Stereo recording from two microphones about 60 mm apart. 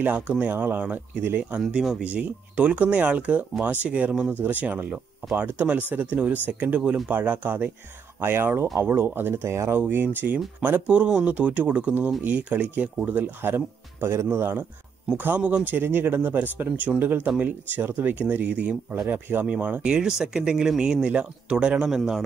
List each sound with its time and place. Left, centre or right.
0.0 s speech: right
2.0 s speech: right
4.3 s speech: right
9.8 s speech: right
15.1 s speech: right
18.4 s speech: right
19.0 s speech: right
19.9 s speech: centre